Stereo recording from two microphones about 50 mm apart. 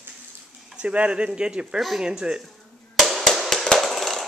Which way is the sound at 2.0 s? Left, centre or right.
Centre.